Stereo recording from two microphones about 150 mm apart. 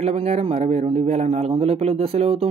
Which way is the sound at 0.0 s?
45° right (ahead or behind).